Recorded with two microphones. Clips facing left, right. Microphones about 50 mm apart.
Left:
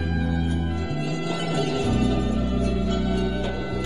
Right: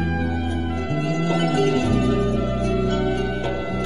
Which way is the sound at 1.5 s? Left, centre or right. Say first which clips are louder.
Right 5 dB; right.